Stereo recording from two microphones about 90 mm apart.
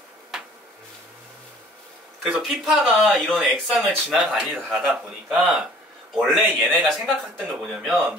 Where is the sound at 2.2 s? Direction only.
5° right (ahead or behind).